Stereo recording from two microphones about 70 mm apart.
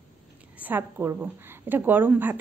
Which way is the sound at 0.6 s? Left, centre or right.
Right.